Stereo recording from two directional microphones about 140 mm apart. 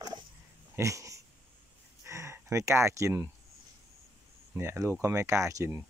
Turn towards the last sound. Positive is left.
turn(degrees=-20)  # may be behind; listen again after turning